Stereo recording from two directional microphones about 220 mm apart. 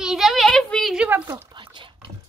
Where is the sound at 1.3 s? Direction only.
20° right (ahead or behind).